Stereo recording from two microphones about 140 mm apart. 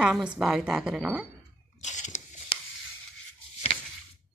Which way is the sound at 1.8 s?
60° left (ahead or behind).